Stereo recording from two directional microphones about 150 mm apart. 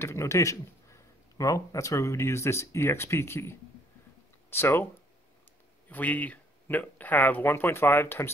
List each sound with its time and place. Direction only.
0.0 s speech: 20° left (ahead or behind)
5.9 s speech: 10° left (ahead or behind)